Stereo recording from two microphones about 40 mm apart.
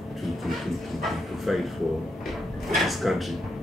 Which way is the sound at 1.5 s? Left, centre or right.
Centre.